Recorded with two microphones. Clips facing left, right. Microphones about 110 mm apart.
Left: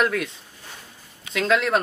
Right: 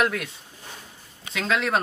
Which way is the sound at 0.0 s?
5° right (ahead or behind).